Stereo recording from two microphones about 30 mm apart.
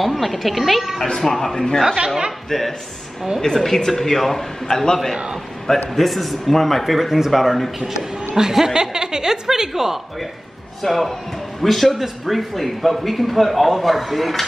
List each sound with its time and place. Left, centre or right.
0.0 s a man's voice: centre
1.2 s a man's voice: centre
5.9 s a man's voice: centre
8.4 s a woman's voice: centre
10.8 s a man's voice: centre
11.9 s a man's voice: centre